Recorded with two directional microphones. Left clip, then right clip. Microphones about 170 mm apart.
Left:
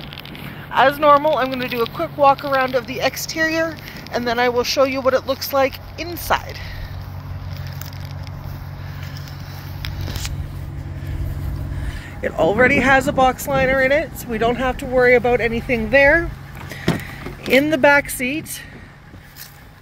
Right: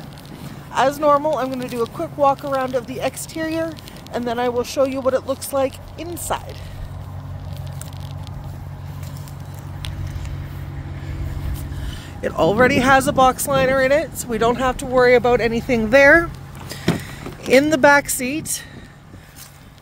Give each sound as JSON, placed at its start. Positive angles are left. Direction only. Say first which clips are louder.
{"t": 0.7, "sound": "speech", "louder": "left 3 dB", "side_deg": 0}
{"t": 12.4, "sound": "speech", "louder": "left 1 dB", "side_deg": -15}
{"t": 15.7, "sound": "speech", "louder": "right 2 dB", "side_deg": -35}
{"t": 17.5, "sound": "speech", "louder": "right 1 dB", "side_deg": -25}